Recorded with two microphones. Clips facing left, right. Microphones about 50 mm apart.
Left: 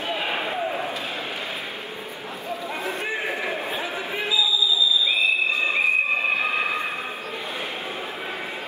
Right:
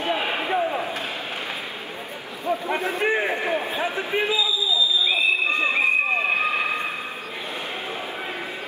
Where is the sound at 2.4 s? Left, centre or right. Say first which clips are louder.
Right 6 dB; right.